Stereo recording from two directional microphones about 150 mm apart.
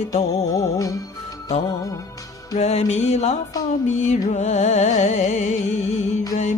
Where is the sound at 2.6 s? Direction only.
45° left (ahead or behind).